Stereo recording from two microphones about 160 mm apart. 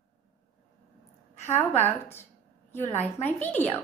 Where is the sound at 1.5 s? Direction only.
15° left (ahead or behind).